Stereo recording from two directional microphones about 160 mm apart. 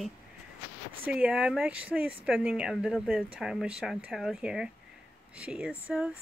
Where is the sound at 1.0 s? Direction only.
5° right (ahead or behind).